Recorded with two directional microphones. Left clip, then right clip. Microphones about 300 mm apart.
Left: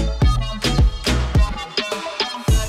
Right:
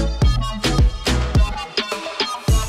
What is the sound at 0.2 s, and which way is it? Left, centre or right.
Music, centre.